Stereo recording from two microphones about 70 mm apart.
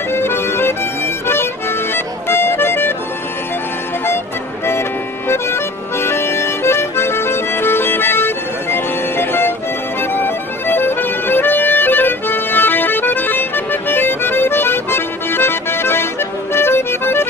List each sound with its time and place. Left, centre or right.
0.1 s accordion: left
1.2 s music: left
5.3 s accordion: left
16.5 s music: left